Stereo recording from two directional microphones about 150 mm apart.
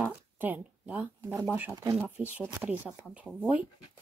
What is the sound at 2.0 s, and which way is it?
Speech, 5° right (ahead or behind).